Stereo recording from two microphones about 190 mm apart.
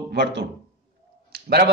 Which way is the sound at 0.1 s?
65° right (ahead or behind).